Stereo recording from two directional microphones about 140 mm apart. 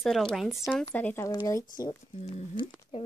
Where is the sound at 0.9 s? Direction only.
15° left (ahead or behind).